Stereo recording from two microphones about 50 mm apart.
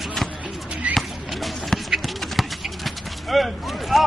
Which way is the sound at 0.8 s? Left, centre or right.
Right.